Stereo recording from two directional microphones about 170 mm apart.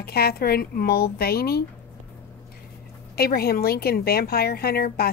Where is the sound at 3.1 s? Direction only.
65° left (ahead or behind).